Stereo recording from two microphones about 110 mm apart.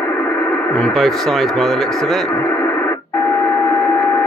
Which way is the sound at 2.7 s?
25° left (ahead or behind).